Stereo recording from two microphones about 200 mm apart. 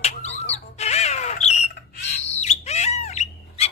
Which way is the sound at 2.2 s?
35° left (ahead or behind).